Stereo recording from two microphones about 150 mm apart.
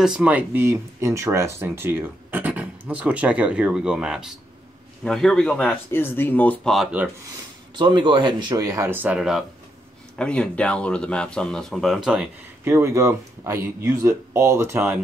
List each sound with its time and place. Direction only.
0.0 s a man's voice: 5° right (ahead or behind)
7.7 s speech: 30° right (ahead or behind); by 9.4 s 5° right (ahead or behind)
10.1 s speech: 5° left (ahead or behind)
12.6 s speech: 15° right (ahead or behind)